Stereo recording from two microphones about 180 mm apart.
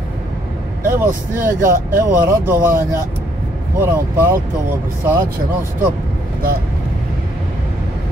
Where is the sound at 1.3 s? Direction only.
50° right (ahead or behind).